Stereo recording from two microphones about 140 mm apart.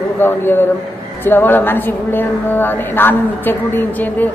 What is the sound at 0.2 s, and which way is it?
A woman's voice, 15° left (ahead or behind).